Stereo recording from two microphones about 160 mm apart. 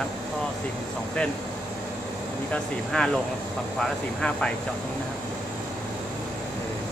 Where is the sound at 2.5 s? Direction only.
5° left (ahead or behind).